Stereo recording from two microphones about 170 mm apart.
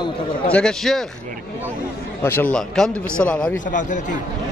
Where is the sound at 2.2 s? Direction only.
15° left (ahead or behind).